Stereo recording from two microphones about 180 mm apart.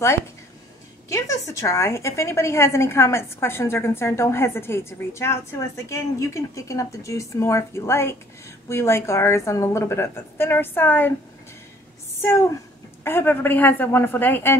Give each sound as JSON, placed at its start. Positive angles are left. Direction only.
{"t": 1.0, "sound": "a woman's voice", "side_deg": 15}
{"t": 13.0, "sound": "a woman's voice", "side_deg": 10}